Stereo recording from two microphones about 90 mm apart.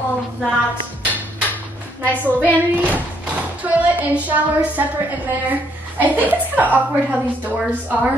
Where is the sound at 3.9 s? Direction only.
20° right (ahead or behind).